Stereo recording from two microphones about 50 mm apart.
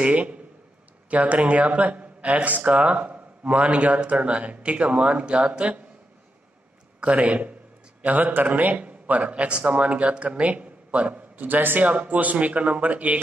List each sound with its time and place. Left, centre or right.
0.0 s speech: right
7.2 s speech: right